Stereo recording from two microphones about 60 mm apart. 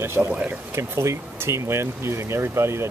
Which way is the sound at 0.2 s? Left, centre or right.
Right.